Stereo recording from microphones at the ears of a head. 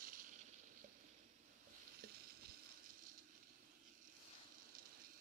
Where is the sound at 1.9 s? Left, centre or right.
Right.